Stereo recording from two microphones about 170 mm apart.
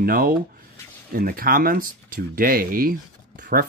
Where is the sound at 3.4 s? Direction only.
55° right (ahead or behind).